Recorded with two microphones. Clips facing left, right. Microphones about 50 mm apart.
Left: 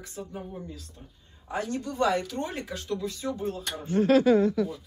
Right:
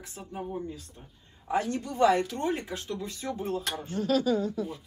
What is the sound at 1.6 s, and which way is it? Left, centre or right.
Speech, right.